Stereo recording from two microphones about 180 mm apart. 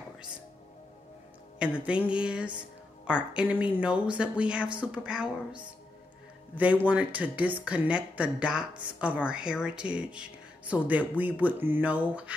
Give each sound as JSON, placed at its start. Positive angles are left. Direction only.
{"t": 1.6, "sound": "speech", "side_deg": -5}